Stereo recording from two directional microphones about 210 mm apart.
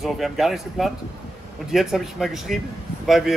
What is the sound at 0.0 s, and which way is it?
Speech, centre (ahead or behind).